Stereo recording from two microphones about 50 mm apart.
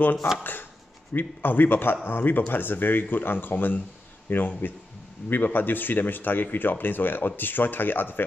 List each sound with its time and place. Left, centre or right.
0.4 s a man's voice: left